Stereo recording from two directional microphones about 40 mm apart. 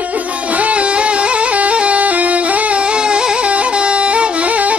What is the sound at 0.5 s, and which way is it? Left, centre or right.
Music, right.